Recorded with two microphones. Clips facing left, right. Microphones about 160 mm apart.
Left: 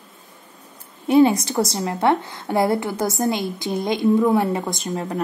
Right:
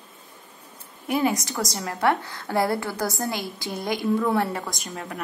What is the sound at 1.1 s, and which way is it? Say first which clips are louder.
A woman's voice: left 9 dB; 30° left (ahead or behind).